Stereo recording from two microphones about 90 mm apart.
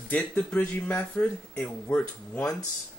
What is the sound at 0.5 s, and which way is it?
Speech, 20° left (ahead or behind).